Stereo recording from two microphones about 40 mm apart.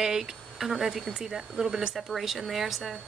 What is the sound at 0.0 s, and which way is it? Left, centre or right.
Speech, centre.